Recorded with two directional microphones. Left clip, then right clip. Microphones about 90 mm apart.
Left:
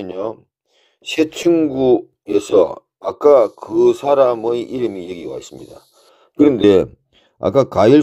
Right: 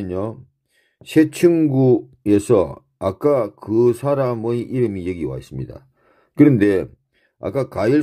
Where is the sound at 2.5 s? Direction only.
35° left (ahead or behind).